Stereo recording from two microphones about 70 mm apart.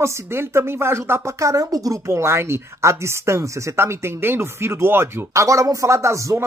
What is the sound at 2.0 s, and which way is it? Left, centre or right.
Speech, right.